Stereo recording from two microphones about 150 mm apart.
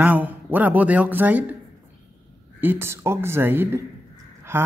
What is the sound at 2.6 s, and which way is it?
Speech, 15° right (ahead or behind).